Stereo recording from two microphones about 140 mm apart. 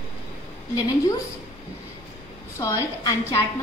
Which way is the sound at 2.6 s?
25° left (ahead or behind).